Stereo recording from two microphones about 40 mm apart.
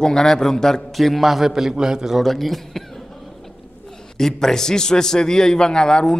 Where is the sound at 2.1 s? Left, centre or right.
Centre.